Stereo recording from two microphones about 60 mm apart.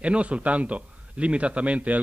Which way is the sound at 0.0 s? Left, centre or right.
Right.